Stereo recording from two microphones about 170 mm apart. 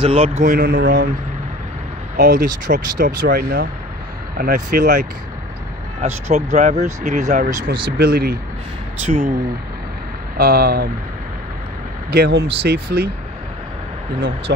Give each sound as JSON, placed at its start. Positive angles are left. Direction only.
{"t": 0.0, "sound": "speech", "side_deg": -35}
{"t": 2.1, "sound": "speech", "side_deg": -55}
{"t": 5.9, "sound": "speech", "side_deg": -40}
{"t": 8.0, "sound": "speech", "side_deg": -65}
{"t": 9.0, "sound": "speech", "side_deg": -50}
{"t": 10.3, "sound": "speech", "side_deg": -65}
{"t": 12.1, "sound": "speech", "side_deg": -70}